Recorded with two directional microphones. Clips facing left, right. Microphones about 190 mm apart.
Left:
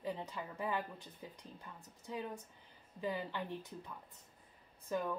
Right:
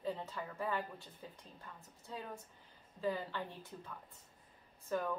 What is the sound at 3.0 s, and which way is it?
Speech, 15° left (ahead or behind).